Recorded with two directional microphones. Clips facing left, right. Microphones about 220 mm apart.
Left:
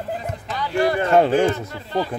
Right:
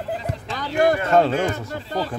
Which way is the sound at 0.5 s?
45° right (ahead or behind).